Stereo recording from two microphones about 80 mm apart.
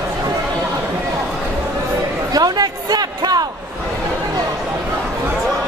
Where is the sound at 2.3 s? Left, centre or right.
Right.